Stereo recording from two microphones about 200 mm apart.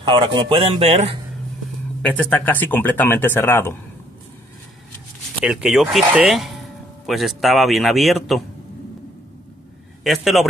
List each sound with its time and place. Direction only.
0.0 s speech: 25° right (ahead or behind)
2.0 s speech: 10° left (ahead or behind)
5.4 s a man's voice: 5° right (ahead or behind)
10.0 s a man's voice: centre (ahead or behind)